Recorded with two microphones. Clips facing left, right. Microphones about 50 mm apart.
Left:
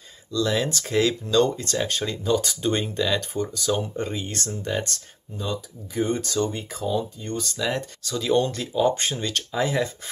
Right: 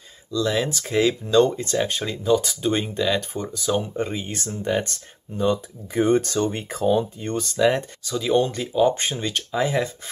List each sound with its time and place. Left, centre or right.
0.3 s speech: centre
5.4 s speech: right
7.5 s speech: right
8.0 s speech: centre